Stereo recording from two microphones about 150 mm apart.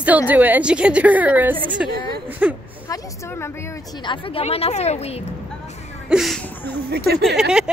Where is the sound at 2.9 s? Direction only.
20° left (ahead or behind); by 5.2 s 45° left (ahead or behind).